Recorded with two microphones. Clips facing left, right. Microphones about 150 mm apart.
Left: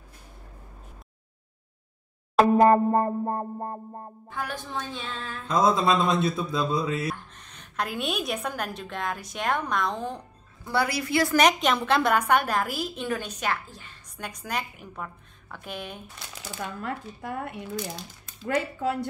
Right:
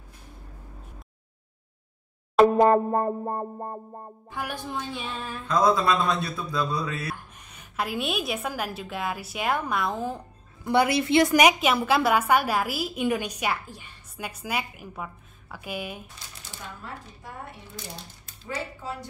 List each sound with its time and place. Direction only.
2.3 s a woman's voice: centre (ahead or behind)
5.5 s speech: 20° left (ahead or behind)
7.3 s a woman's voice: 10° right (ahead or behind)
10.6 s a woman's voice: 20° right (ahead or behind)
11.3 s a woman's voice: 10° right (ahead or behind)
16.5 s speech: 65° left (ahead or behind)